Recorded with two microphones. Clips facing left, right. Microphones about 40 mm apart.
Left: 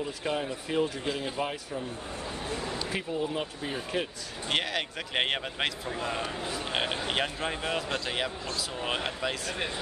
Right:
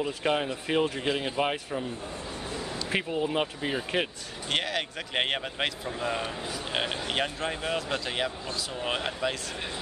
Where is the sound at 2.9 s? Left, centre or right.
Right.